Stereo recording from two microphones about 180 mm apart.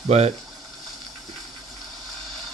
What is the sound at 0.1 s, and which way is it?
Speech, 35° right (ahead or behind).